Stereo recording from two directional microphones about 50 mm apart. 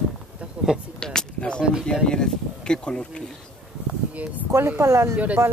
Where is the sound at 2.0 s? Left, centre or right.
Centre.